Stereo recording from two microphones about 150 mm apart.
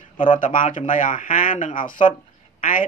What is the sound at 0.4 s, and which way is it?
Speech, 65° left (ahead or behind).